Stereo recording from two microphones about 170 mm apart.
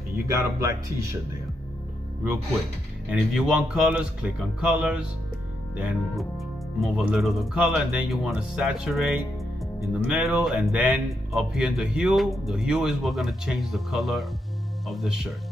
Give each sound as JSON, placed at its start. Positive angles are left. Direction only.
{"t": 0.3, "sound": "speech", "side_deg": -15}
{"t": 3.1, "sound": "speech", "side_deg": -5}
{"t": 6.1, "sound": "speech", "side_deg": 0}